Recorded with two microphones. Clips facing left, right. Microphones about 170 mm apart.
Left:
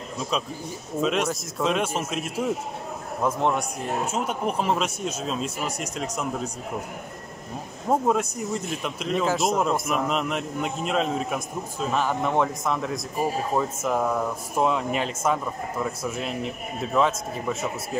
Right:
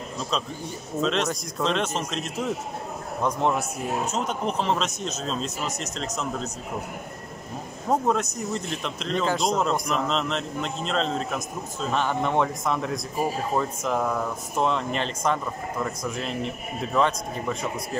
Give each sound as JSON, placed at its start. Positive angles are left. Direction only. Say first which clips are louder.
{"t": 1.0, "sound": "a man's voice", "louder": "left 1 dB", "side_deg": 10}
{"t": 7.9, "sound": "a man's voice", "louder": "left 1 dB", "side_deg": 10}